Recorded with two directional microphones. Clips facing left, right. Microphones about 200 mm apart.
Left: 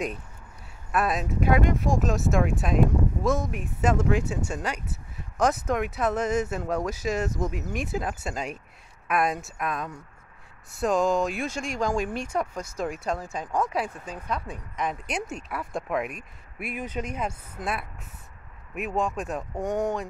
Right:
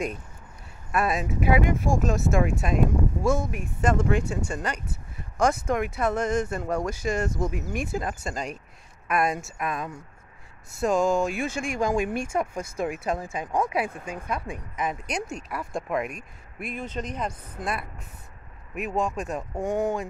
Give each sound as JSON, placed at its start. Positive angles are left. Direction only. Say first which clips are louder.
{"t": 0.9, "sound": "speech", "louder": "even", "side_deg": 0}
{"t": 11.4, "sound": "speech", "louder": "right 2 dB", "side_deg": -55}
{"t": 11.8, "sound": "speech", "louder": "right 2 dB", "side_deg": -10}
{"t": 18.8, "sound": "speech", "louder": "even", "side_deg": 0}